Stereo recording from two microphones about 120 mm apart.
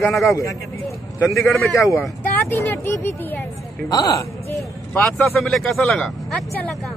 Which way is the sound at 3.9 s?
30° left (ahead or behind).